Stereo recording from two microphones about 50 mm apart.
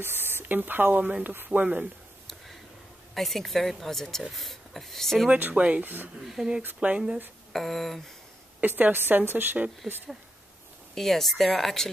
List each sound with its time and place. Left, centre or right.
0.0 s a woman's voice: right
3.2 s speech: centre
5.3 s speech: right
6.2 s speech: centre
6.8 s speech: right
7.5 s speech: centre
8.5 s a woman's voice: right
11.0 s speech: centre